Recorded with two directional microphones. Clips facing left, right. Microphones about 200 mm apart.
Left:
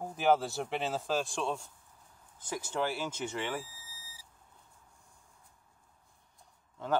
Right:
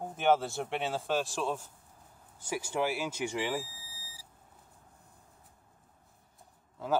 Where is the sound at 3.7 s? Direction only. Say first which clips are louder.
Right 3 dB; 30° right (ahead or behind).